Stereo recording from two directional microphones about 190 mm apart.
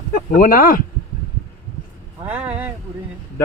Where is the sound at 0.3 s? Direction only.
50° left (ahead or behind).